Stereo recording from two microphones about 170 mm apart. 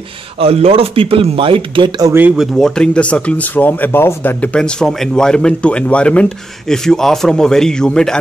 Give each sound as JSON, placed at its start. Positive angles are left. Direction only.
{"t": 0.4, "sound": "speech", "side_deg": -35}
{"t": 2.1, "sound": "speech", "side_deg": -5}